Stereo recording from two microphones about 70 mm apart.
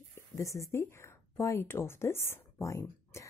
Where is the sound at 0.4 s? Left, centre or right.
Left.